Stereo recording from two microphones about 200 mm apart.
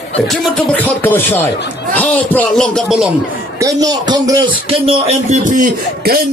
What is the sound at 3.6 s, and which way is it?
Speech, 20° right (ahead or behind).